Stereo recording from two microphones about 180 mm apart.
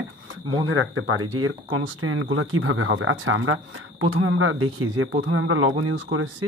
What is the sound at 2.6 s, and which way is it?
Speech, 90° right.